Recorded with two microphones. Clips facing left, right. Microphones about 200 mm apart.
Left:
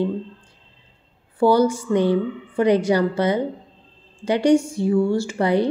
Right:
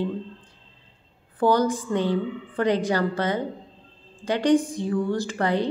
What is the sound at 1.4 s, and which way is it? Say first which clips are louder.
A woman's voice: left 4 dB; 10° left (ahead or behind).